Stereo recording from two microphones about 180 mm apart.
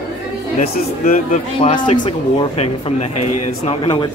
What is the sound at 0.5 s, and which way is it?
Speech, 50° left (ahead or behind).